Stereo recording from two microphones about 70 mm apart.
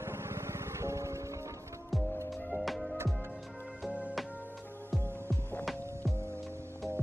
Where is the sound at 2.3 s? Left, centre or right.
Centre.